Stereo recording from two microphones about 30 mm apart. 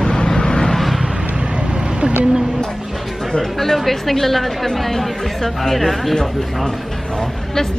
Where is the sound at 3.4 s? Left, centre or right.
Centre.